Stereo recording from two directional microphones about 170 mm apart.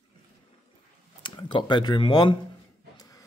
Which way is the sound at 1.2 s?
25° left (ahead or behind).